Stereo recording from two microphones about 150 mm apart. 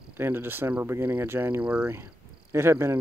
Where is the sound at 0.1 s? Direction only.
15° right (ahead or behind).